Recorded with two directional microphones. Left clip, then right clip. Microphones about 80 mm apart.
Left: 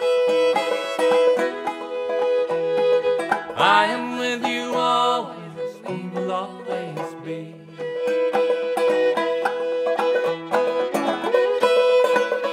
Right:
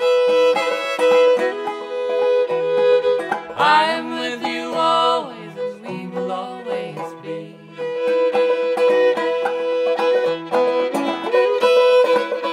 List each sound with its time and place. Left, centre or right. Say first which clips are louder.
0.0 s music: right 4 dB; right
3.5 s music: right 3 dB; left
4.7 s music: right 3 dB; right
6.1 s music: right 1 dB; left
7.9 s music: right 3 dB; right